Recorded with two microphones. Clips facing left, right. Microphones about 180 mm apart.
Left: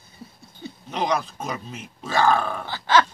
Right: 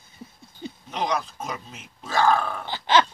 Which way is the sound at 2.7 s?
20° right (ahead or behind).